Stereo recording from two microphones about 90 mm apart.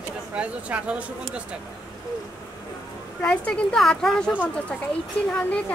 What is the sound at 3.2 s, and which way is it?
A woman's voice, 10° left (ahead or behind).